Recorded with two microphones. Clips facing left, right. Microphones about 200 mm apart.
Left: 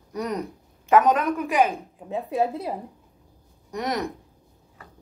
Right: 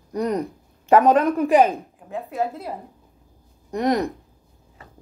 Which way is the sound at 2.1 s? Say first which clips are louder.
Left 2 dB; 20° left (ahead or behind).